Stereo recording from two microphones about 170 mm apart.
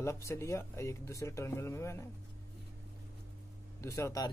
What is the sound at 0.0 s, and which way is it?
Speech, 15° left (ahead or behind).